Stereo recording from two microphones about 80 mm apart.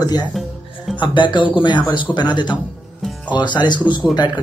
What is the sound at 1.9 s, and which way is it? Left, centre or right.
Speech, left.